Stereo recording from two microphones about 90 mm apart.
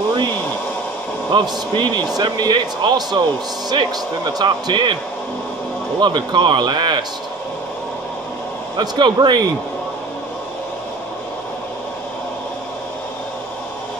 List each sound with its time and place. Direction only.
1.3 s speech: 55° right (ahead or behind)
5.9 s a man's voice: 55° right (ahead or behind)
8.7 s a man's voice: 55° right (ahead or behind)